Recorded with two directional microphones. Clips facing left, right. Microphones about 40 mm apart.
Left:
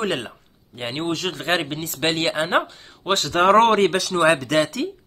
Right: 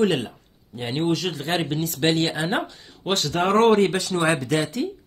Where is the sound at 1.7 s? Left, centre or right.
Left.